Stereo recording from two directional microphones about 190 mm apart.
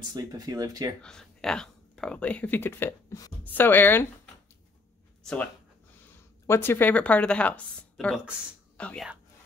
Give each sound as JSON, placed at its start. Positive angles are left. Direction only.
{"t": 0.1, "sound": "speech", "side_deg": -20}
{"t": 1.0, "sound": "speech", "side_deg": 5}
{"t": 5.2, "sound": "speech", "side_deg": 5}